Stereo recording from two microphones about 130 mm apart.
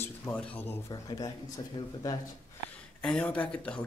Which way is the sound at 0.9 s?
30° left (ahead or behind).